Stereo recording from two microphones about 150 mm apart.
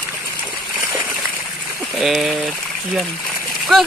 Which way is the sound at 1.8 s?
Centre (ahead or behind).